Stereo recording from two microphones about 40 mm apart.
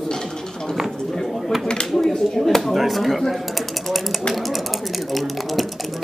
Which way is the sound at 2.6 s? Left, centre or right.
Centre.